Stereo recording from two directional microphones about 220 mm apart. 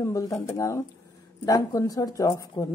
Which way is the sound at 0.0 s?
15° left (ahead or behind).